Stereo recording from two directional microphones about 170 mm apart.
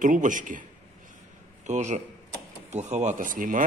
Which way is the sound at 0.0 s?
50° right (ahead or behind).